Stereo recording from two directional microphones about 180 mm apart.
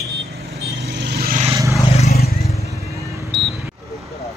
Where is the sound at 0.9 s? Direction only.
70° right (ahead or behind).